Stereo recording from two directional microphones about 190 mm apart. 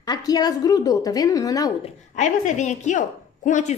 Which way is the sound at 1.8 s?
40° left (ahead or behind).